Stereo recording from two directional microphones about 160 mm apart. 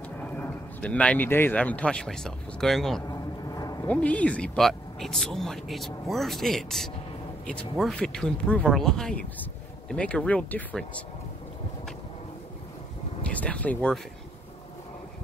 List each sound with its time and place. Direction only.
0.2 s speech: 10° left (ahead or behind)
3.1 s a sound: 20° left (ahead or behind)
3.8 s speech: 10° left (ahead or behind)
7.9 s speech: 5° left (ahead or behind)
13.2 s speech: 10° left (ahead or behind)